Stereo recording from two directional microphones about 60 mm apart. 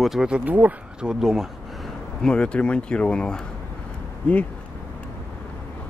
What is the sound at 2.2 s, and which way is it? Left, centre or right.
Speech, centre.